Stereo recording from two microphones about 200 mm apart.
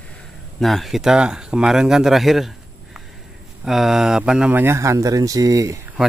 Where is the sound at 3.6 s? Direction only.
Centre (ahead or behind).